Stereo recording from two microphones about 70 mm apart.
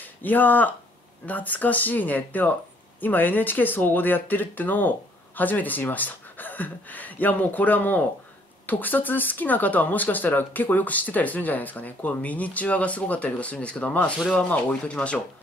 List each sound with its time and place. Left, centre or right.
0.0 s speech: left